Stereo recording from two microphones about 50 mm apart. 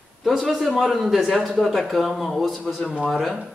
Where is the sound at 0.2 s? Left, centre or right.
Centre.